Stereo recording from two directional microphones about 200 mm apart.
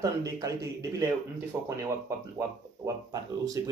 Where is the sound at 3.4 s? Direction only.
20° right (ahead or behind).